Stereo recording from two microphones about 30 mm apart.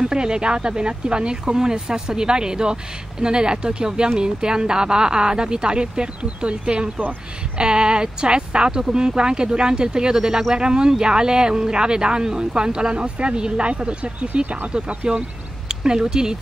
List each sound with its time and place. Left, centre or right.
0.0 s speech: right
6.2 s speech: right
15.7 s speech: right